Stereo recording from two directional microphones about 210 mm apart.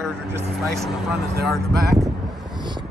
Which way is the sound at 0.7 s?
Centre (ahead or behind).